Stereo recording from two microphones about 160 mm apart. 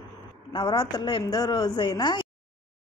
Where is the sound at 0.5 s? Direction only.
30° left (ahead or behind).